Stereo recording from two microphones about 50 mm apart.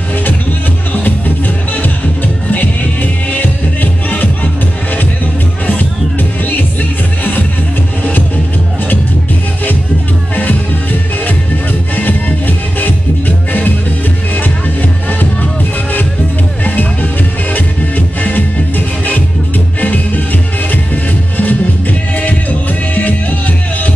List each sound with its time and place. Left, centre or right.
1.0 s music: left
10.3 s music: left
16.6 s music: left
20.7 s music: left